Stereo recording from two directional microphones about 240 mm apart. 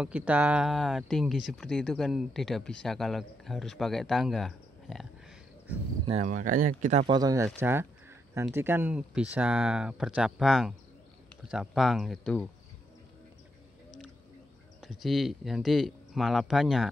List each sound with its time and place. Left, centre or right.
0.0 s speech: centre
6.0 s speech: right
7.2 s speech: centre
7.6 s a sound: centre
8.5 s speech: centre
14.8 s speech: centre